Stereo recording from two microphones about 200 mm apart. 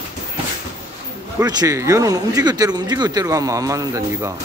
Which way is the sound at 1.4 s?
20° right (ahead or behind).